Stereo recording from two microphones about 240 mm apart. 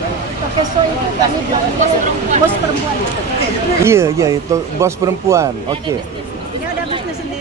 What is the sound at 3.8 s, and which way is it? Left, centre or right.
Speech, centre.